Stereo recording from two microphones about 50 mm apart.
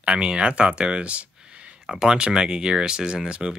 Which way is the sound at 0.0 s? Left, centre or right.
Centre.